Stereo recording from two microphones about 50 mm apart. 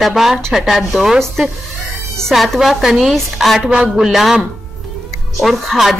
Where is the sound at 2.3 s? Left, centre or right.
Centre.